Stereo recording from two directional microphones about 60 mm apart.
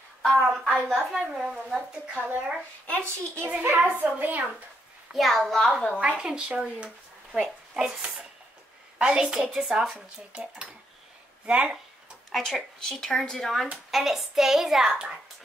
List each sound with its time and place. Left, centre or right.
0.2 s a woman's voice: centre
0.8 s a woman's voice: centre
2.1 s speech: right
5.1 s speech: centre
5.9 s speech: centre
7.3 s a woman's voice: centre
11.4 s speech: centre
12.3 s speech: centre